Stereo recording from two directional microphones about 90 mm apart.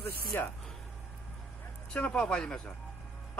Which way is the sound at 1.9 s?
10° left (ahead or behind).